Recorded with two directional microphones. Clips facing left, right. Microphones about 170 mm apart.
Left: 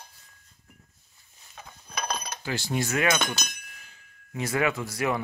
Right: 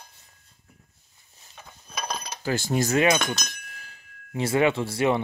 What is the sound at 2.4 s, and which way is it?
Cutlery, 45° right (ahead or behind).